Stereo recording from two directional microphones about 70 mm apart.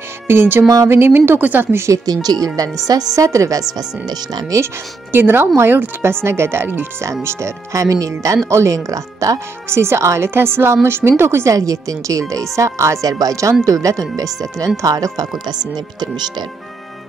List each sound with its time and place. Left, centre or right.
0.3 s a woman's voice: right
2.1 s speech: right
2.4 s speech: right
3.7 s speech: right
5.1 s a woman's voice: right
7.2 s speech: right
9.7 s a woman's voice: right
11.5 s speech: right
15.7 s speech: right